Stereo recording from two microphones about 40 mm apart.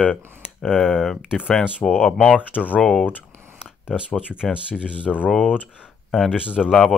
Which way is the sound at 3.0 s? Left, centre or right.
Right.